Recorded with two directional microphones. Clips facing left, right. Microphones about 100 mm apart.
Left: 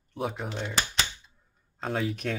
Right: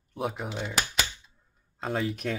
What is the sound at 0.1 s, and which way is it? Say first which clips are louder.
Speech: even; centre (ahead or behind).